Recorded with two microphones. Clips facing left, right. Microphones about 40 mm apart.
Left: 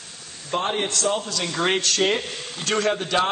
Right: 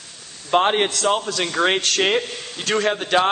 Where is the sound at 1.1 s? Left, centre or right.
Right.